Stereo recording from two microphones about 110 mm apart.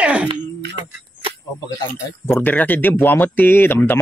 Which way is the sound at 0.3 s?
45° right (ahead or behind).